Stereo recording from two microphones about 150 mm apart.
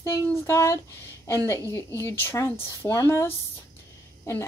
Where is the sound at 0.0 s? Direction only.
20° left (ahead or behind).